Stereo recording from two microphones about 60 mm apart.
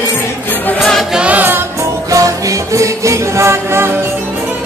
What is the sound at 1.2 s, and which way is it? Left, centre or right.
Music, right.